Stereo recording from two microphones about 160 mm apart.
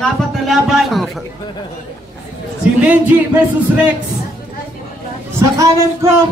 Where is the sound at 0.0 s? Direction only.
Centre (ahead or behind).